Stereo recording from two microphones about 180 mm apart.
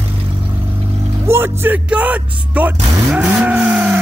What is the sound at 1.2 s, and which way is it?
Speech, 15° right (ahead or behind).